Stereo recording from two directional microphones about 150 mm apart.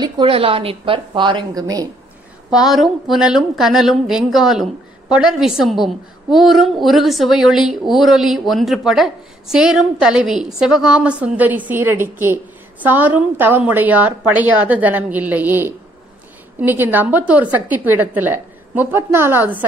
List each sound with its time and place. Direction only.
0.0 s a woman's voice: 35° right (ahead or behind)
2.5 s a woman's voice: centre (ahead or behind)